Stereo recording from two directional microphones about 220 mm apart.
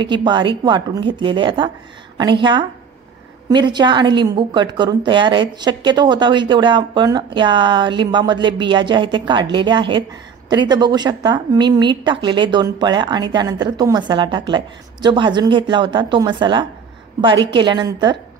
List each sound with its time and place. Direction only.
0.0 s a woman's voice: 20° right (ahead or behind)